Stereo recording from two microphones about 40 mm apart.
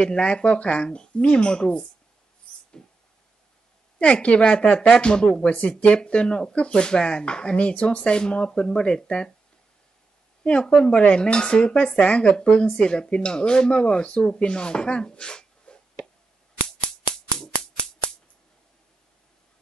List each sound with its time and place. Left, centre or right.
0.0 s speech: left
2.5 s a sound: left
4.0 s speech: left
10.4 s speech: left
10.7 s speech: centre
16.6 s a sound: centre